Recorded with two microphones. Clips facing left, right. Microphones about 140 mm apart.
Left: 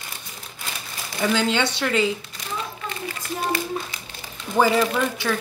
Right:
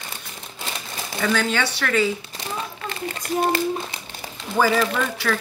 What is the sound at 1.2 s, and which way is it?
Speech, 20° left (ahead or behind).